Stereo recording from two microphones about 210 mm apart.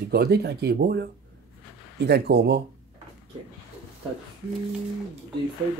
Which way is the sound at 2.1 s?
50° right (ahead or behind).